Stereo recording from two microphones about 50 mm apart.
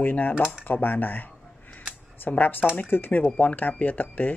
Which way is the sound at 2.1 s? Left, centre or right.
Left.